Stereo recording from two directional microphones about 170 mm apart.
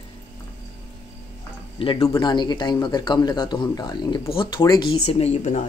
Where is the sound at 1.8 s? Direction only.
30° left (ahead or behind).